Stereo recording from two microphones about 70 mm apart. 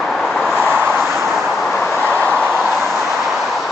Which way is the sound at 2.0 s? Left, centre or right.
Right.